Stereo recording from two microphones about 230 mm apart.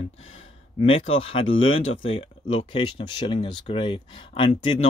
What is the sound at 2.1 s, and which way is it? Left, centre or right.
Speech, left.